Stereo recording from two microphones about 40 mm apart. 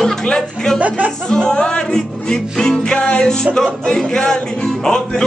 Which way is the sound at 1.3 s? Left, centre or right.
Left.